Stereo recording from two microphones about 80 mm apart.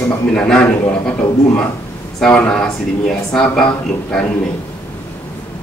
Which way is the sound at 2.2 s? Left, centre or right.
Centre.